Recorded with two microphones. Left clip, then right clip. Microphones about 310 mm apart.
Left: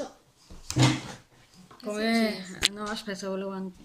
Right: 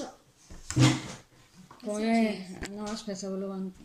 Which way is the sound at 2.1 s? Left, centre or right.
Left.